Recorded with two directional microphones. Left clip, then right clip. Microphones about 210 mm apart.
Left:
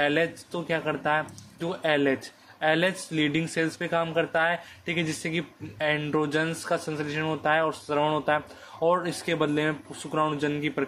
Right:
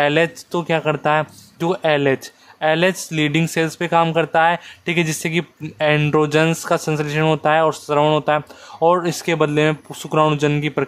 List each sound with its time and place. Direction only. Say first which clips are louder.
0.0 s speech: right 8 dB; 30° right (ahead or behind)